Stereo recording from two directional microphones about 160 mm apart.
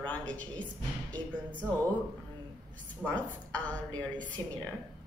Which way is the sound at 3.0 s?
10° left (ahead or behind).